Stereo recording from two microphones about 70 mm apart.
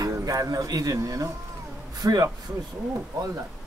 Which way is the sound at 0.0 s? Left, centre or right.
Right.